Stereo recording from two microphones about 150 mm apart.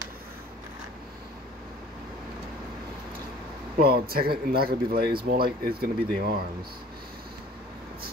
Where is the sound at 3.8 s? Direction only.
90° right.